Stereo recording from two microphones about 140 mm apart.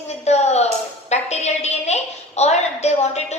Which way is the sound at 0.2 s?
50° left (ahead or behind).